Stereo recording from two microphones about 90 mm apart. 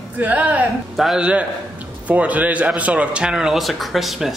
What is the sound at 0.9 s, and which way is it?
Speech, 5° right (ahead or behind).